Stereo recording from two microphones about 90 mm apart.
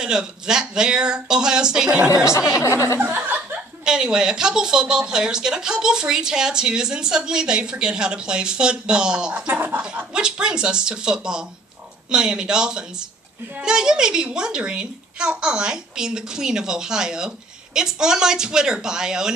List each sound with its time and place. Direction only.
0.0 s speech: 10° right (ahead or behind)
2.5 s speech: 35° left (ahead or behind)
3.0 s speech: 20° right (ahead or behind)
3.8 s speech: 10° right (ahead or behind)
9.5 s speech: 20° right (ahead or behind)
9.8 s speech: 10° right (ahead or behind)